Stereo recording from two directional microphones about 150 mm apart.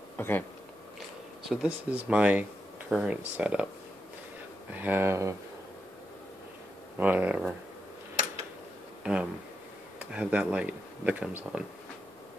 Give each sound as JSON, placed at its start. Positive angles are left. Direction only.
{"t": 0.2, "sound": "speech", "side_deg": 15}
{"t": 1.5, "sound": "speech", "side_deg": -5}
{"t": 4.7, "sound": "speech", "side_deg": -15}
{"t": 7.0, "sound": "speech", "side_deg": -10}
{"t": 9.0, "sound": "speech", "side_deg": -5}